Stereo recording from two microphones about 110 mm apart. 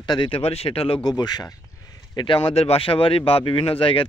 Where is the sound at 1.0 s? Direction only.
40° left (ahead or behind).